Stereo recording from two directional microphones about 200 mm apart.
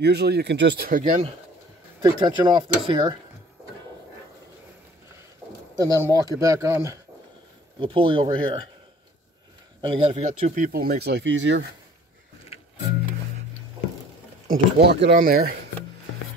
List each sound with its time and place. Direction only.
0.0 s speech: 55° right (ahead or behind); by 1.3 s 35° right (ahead or behind)
2.0 s speech: 15° right (ahead or behind)
5.8 s speech: 20° right (ahead or behind)
7.8 s speech: 25° right (ahead or behind)
9.8 s speech: 25° right (ahead or behind)
10.2 s speech: 35° right (ahead or behind)
11.1 s speech: 60° right (ahead or behind)
14.5 s speech: 55° right (ahead or behind)